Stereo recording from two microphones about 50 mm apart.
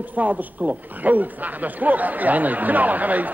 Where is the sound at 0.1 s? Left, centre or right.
Right.